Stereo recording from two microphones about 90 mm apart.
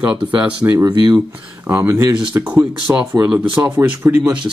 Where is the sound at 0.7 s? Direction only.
45° right (ahead or behind).